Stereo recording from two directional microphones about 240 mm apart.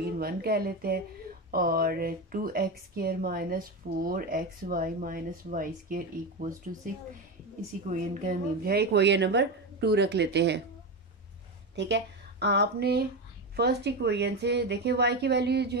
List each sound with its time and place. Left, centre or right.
0.2 s speech: right
7.9 s a woman's voice: right
11.7 s a woman's voice: right